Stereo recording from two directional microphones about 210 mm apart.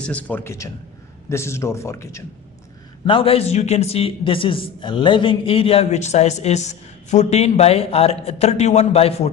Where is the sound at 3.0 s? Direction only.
25° left (ahead or behind).